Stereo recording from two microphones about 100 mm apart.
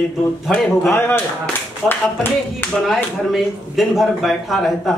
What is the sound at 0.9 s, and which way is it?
Speech, 20° left (ahead or behind).